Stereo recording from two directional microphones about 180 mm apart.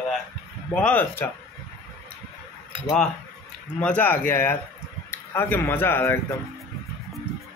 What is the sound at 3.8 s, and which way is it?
A man's voice, 10° left (ahead or behind).